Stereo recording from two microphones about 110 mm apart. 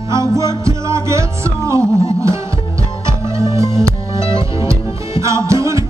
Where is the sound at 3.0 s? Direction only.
25° right (ahead or behind).